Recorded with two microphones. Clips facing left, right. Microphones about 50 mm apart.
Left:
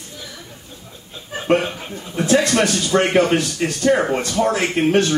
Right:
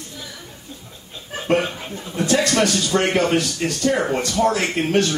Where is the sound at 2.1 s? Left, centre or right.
Left.